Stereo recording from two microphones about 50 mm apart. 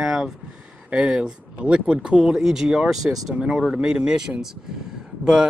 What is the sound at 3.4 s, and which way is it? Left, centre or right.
Speech, centre.